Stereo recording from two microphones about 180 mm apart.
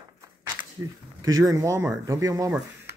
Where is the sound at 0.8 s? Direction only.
20° right (ahead or behind).